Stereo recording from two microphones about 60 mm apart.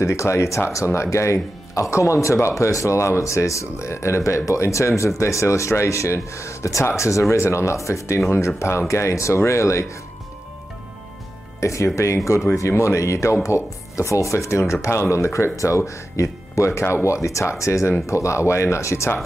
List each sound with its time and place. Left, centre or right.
0.0 s speech: left
11.6 s speech: left